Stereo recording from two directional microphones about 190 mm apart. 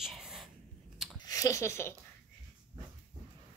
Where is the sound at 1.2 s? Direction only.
15° left (ahead or behind).